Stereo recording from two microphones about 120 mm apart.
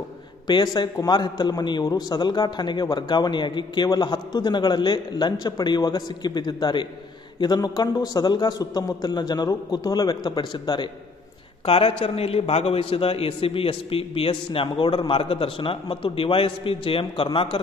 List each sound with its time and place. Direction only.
0.5 s a man's voice: 40° left (ahead or behind)
11.6 s a man's voice: 50° left (ahead or behind)